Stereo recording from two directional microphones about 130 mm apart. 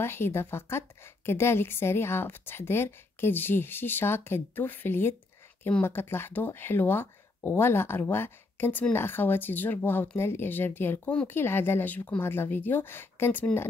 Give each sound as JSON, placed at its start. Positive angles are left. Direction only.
{"t": 0.0, "sound": "a woman's voice", "side_deg": 20}